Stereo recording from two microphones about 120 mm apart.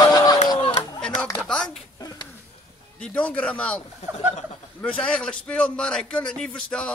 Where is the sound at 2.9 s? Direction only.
10° left (ahead or behind).